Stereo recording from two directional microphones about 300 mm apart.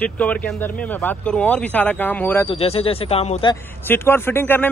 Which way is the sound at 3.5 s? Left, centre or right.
Centre.